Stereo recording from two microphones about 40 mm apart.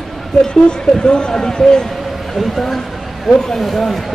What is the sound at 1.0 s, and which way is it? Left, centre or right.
Speech, left.